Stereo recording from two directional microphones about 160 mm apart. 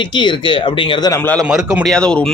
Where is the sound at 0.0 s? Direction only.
30° left (ahead or behind).